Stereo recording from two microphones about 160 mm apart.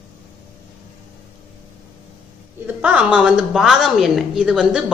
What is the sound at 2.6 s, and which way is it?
A woman's voice, 10° right (ahead or behind).